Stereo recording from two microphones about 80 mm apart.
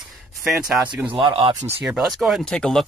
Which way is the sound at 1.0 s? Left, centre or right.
Right.